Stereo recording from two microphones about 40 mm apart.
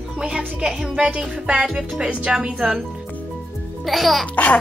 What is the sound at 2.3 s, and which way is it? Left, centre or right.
Music, right.